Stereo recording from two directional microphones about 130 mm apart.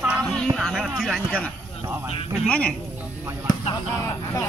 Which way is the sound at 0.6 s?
5° right (ahead or behind).